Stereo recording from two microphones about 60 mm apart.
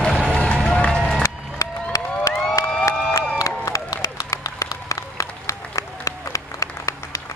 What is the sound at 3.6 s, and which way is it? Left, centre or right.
Applause, left.